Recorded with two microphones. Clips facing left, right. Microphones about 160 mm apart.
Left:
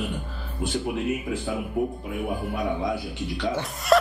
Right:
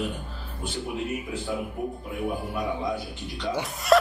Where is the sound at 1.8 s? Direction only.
75° left (ahead or behind).